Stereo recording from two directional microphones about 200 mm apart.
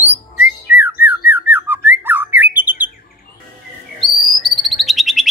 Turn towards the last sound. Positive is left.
turn(degrees=0)  # may be behind; listen again after turning